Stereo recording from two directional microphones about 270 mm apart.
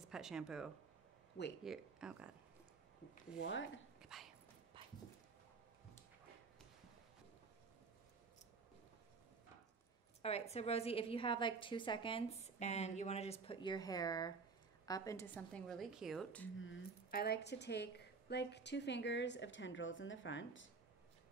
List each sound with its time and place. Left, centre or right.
0.1 s speech: centre
3.4 s speech: left
4.0 s dog: centre
4.7 s horse: centre
10.2 s a woman's voice: left; by 16.4 s centre
16.5 s speech: left